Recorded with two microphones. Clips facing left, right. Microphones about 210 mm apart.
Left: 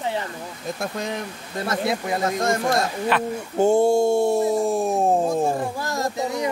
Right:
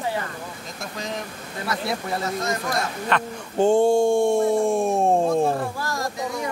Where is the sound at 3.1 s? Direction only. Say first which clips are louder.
Left 3 dB; 5° left (ahead or behind).